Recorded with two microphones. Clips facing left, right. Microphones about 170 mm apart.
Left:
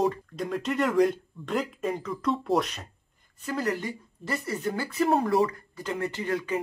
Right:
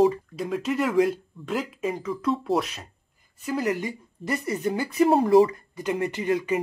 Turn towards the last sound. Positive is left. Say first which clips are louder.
# right 4 dB
turn(degrees=-15)  # may be behind; listen again after turning